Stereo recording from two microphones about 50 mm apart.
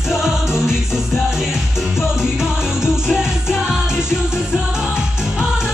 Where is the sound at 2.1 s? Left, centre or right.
Centre.